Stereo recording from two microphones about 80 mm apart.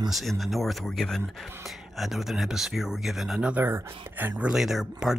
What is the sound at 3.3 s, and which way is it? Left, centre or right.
Speech, centre.